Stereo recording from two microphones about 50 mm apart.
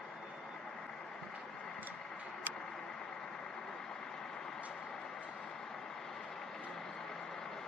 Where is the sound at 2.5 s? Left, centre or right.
Right.